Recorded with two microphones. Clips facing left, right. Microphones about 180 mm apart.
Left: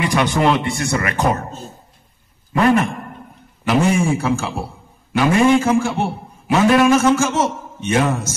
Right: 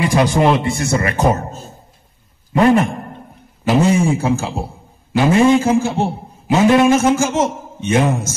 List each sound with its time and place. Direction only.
0.0 s a man's voice: 30° right (ahead or behind)
2.5 s a sound: 25° right (ahead or behind)
3.6 s a man's voice: 20° right (ahead or behind)